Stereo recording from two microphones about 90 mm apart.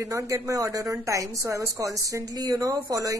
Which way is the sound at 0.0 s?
35° right (ahead or behind).